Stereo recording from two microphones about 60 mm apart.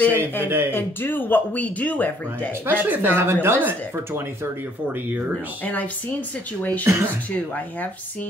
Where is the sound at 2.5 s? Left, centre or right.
Right.